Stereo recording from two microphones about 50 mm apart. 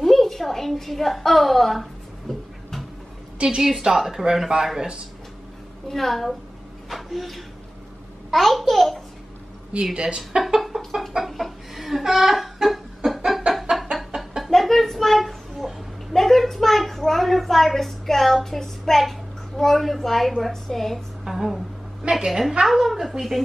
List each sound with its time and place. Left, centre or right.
0.0 s a sound: centre
3.4 s a woman's voice: centre
5.9 s a woman's voice: centre
9.9 s speech: centre
10.4 s chicken: centre
13.5 s chicken: centre
13.9 s chicken: centre
14.5 s a sound: centre
21.2 s a woman's voice: centre